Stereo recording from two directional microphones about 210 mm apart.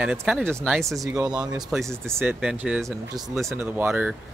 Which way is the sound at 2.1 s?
10° right (ahead or behind).